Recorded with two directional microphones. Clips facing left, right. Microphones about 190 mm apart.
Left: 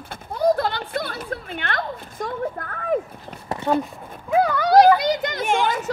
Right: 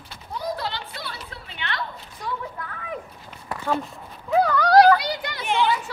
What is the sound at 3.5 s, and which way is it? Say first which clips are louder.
Speech: left 5 dB; 20° left (ahead or behind).